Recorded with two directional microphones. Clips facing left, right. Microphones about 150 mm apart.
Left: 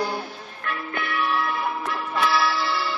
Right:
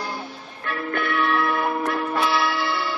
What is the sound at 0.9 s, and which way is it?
Church bell, 60° right (ahead or behind).